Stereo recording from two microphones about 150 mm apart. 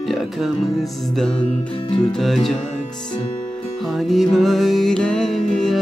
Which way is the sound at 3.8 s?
Centre (ahead or behind).